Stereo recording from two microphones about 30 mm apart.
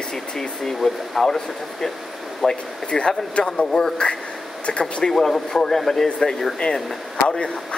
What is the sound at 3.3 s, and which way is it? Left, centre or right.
Speech, left.